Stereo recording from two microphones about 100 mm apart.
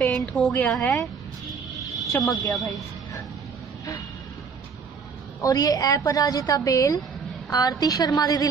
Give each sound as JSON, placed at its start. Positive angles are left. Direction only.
{"t": 0.0, "sound": "a woman's voice", "side_deg": 10}
{"t": 2.2, "sound": "a woman's voice", "side_deg": 40}
{"t": 5.4, "sound": "a woman's voice", "side_deg": 35}